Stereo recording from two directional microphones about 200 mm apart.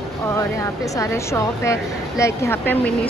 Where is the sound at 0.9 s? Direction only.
15° left (ahead or behind).